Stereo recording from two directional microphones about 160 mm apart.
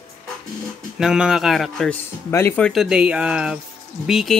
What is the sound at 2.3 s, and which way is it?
Speech, 10° left (ahead or behind).